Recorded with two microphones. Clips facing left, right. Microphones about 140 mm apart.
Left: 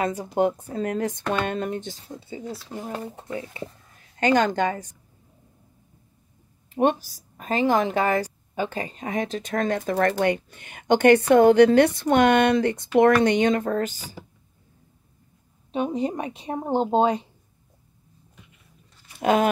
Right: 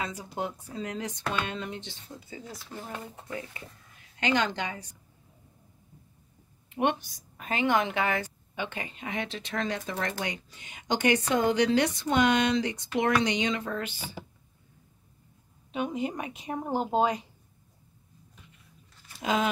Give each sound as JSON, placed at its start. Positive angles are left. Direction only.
{"t": 0.0, "sound": "a woman's voice", "side_deg": 50}
{"t": 2.1, "sound": "speech", "side_deg": 25}
{"t": 4.2, "sound": "a woman's voice", "side_deg": 45}
{"t": 6.7, "sound": "a sound", "side_deg": 35}
{"t": 7.1, "sound": "a woman's voice", "side_deg": 35}
{"t": 15.7, "sound": "speech", "side_deg": 35}
{"t": 19.1, "sound": "speech", "side_deg": 55}